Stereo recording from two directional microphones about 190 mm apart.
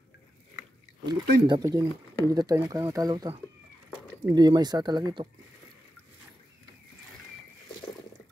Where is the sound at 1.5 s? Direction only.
20° right (ahead or behind).